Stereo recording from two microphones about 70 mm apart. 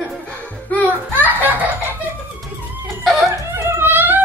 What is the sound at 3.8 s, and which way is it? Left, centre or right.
Music, right.